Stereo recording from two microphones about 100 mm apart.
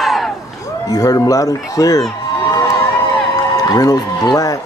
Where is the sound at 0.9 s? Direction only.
35° left (ahead or behind).